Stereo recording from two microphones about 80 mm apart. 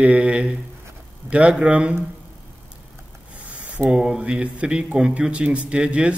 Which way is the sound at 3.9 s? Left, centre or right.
Centre.